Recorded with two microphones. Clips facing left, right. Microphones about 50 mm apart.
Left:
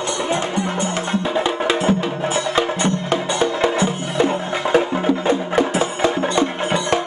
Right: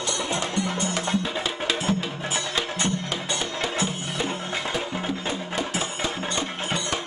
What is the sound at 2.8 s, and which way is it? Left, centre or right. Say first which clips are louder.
Music: left 8 dB; left.